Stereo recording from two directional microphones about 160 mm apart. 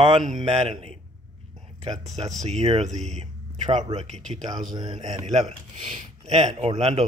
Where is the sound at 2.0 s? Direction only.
45° right (ahead or behind).